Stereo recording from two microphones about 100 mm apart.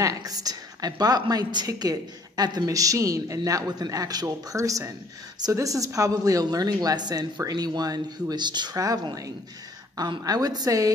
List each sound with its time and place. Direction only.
0.0 s a woman's voice: 35° right (ahead or behind)